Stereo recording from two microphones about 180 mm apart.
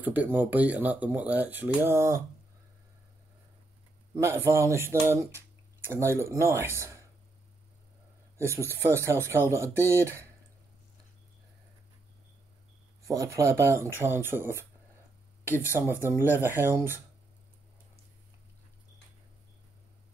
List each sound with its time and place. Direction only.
0.0 s speech: 10° right (ahead or behind)
4.1 s speech: 15° right (ahead or behind)
8.4 s speech: 15° right (ahead or behind)
13.0 s speech: 15° right (ahead or behind)
15.4 s speech: 15° left (ahead or behind)
16.2 s speech: 10° right (ahead or behind)